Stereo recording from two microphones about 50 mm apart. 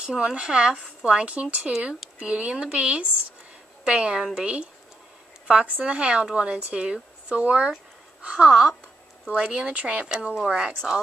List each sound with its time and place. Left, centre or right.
0.0 s a woman's voice: centre
8.5 s speech: centre